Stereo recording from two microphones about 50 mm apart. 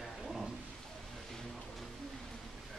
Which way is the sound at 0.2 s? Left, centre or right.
Centre.